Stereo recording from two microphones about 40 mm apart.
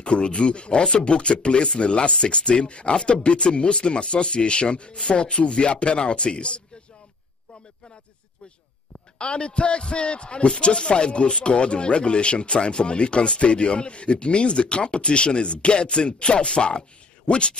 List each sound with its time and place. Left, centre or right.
0.0 s speech: left
9.2 s speech: left